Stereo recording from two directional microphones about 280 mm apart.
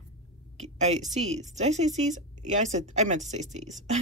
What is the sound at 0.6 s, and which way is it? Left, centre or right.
A woman's voice, right.